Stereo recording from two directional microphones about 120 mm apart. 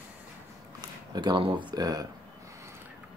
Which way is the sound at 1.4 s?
40° right (ahead or behind).